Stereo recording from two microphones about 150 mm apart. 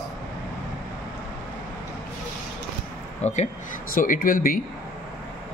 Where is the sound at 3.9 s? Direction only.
65° left (ahead or behind).